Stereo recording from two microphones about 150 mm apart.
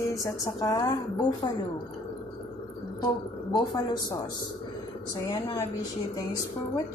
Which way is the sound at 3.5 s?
30° left (ahead or behind).